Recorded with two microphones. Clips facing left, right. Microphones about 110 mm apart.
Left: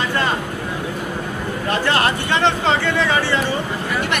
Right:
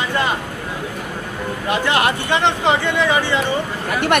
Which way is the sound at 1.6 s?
15° right (ahead or behind).